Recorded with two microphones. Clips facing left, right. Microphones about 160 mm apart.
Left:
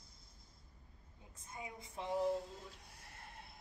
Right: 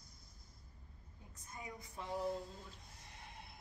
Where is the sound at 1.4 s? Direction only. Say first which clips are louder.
Left 1 dB; 25° left (ahead or behind).